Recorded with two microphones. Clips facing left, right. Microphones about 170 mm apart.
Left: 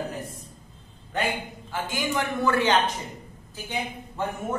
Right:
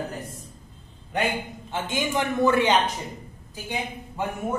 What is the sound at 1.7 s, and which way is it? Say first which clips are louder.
A man's voice: right 2 dB; 20° right (ahead or behind).